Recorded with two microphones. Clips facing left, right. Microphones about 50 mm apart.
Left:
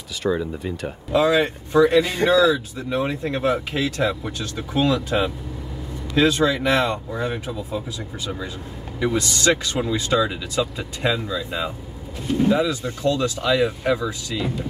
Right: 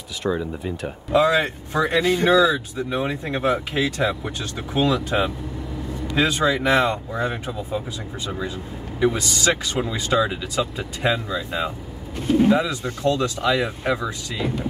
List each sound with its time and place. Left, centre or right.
0.2 s speech: centre
1.2 s speech: centre
9.0 s speech: centre
12.4 s speech: centre